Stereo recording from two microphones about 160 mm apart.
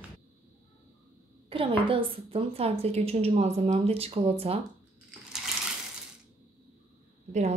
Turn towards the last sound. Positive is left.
turn(degrees=-45)  # may be behind; listen again after turning